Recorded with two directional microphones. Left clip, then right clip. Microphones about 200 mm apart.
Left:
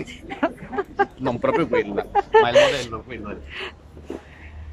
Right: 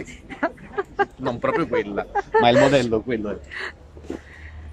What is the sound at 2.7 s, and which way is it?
Speech, 40° right (ahead or behind).